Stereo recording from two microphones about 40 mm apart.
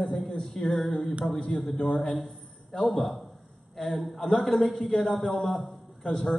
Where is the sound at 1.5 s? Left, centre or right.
Centre.